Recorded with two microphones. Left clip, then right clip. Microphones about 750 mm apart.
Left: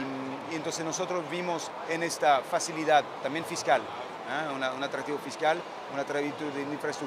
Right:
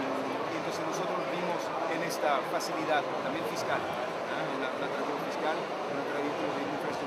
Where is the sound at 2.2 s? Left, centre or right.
Left.